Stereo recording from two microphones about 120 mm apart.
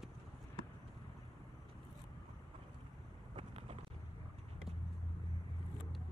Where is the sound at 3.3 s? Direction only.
55° right (ahead or behind).